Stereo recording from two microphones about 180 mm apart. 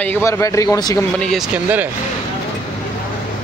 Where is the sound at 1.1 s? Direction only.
5° left (ahead or behind).